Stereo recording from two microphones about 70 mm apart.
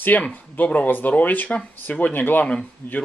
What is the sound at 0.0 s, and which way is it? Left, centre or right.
Speech, left.